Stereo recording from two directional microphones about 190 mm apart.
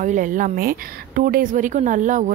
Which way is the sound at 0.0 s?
45° right (ahead or behind).